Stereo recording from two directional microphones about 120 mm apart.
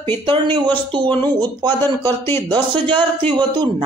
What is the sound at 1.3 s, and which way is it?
A man's voice, 35° right (ahead or behind).